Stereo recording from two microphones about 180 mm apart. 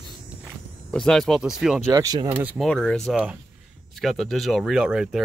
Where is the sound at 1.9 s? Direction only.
20° right (ahead or behind).